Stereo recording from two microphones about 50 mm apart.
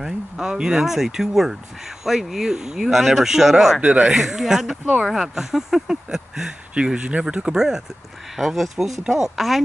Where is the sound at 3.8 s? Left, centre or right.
Right.